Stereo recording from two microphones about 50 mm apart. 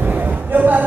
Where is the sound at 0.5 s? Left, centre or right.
Right.